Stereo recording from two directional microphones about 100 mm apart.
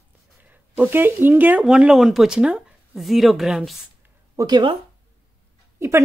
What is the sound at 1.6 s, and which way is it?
Speech, 5° right (ahead or behind).